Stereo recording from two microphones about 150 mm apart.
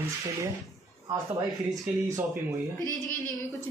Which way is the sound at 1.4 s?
Centre (ahead or behind).